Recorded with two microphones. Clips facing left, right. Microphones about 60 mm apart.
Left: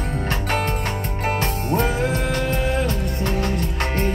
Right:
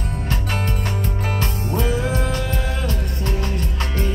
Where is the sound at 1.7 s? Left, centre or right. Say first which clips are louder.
Left 1 dB; left.